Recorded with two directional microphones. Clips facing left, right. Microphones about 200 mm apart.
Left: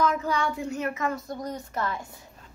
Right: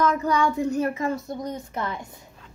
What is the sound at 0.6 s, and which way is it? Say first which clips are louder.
A woman's voice: right 6 dB; 35° right (ahead or behind).